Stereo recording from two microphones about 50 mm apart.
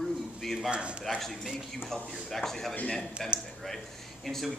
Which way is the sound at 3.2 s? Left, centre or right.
Centre.